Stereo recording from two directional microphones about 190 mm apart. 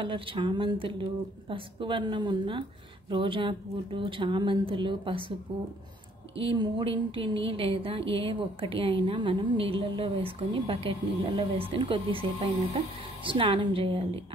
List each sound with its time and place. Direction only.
0.0 s a woman's voice: 25° right (ahead or behind)
6.4 s a woman's voice: 25° right (ahead or behind)